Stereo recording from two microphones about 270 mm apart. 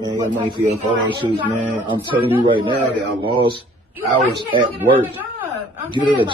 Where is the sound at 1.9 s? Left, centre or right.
Centre.